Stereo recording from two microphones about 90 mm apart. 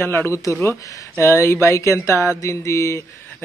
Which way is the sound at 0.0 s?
25° left (ahead or behind).